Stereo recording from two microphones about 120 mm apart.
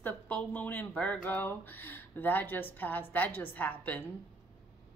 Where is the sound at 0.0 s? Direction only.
15° left (ahead or behind).